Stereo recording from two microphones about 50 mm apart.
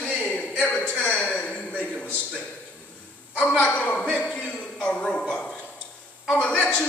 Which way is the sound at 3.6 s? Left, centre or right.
Left.